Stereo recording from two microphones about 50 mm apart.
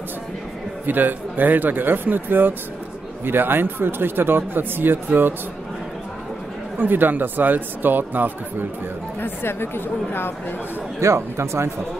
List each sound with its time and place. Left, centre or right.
0.8 s speech: right
6.8 s speech: right
9.2 s a woman's voice: left
11.0 s speech: right